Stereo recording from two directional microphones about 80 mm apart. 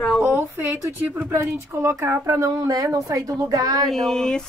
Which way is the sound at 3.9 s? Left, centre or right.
Centre.